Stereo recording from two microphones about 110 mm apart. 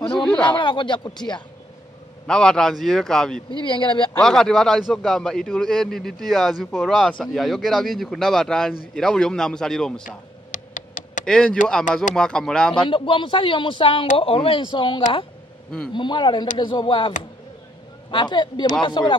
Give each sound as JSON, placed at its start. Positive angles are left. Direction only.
{"t": 0.2, "sound": "speech", "side_deg": 10}
{"t": 0.6, "sound": "speech", "side_deg": 45}
{"t": 2.2, "sound": "a man's voice", "side_deg": 5}
{"t": 3.6, "sound": "speech", "side_deg": 50}
{"t": 4.2, "sound": "a man's voice", "side_deg": 5}
{"t": 11.2, "sound": "speech", "side_deg": 5}
{"t": 12.8, "sound": "speech", "side_deg": 50}
{"t": 18.1, "sound": "speech", "side_deg": 45}